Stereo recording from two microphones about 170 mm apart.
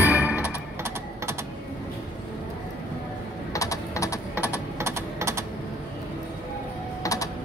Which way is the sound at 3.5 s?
20° left (ahead or behind).